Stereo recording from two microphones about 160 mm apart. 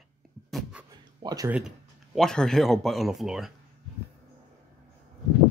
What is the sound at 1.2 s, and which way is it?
Speech, 20° right (ahead or behind).